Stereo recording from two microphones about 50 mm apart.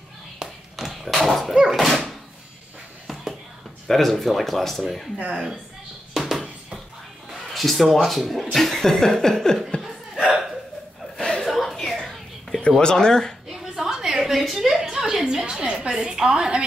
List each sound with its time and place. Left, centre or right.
0.4 s tap: centre
0.7 s a sound: centre
1.5 s dog: centre
1.8 s door: centre
3.8 s speech: centre
6.1 s music: centre
7.2 s a man's voice: centre
11.1 s chuckle: centre
11.4 s a sound: centre
12.0 s whispering: centre
12.8 s speech: centre
13.5 s a sound: centre
15.4 s a woman's voice: centre